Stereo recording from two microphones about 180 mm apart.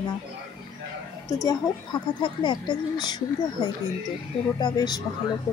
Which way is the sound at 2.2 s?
25° left (ahead or behind).